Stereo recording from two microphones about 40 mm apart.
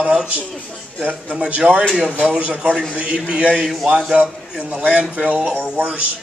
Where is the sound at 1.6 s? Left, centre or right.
Right.